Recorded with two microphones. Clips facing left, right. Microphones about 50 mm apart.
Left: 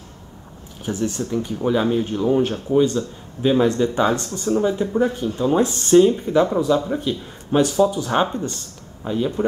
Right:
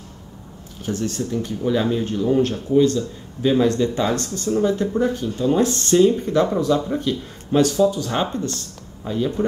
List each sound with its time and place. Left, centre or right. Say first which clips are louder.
0.8 s speech: left 1 dB; centre
7.0 s speech: right 1 dB; centre